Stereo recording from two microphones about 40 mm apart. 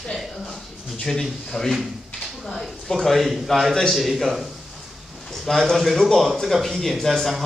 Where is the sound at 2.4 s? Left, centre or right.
Centre.